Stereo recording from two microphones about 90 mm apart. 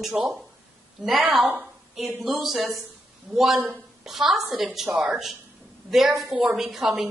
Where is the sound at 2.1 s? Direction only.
Centre (ahead or behind).